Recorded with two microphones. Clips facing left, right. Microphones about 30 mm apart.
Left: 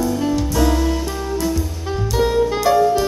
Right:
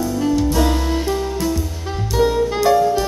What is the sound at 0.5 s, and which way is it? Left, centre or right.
Music, centre.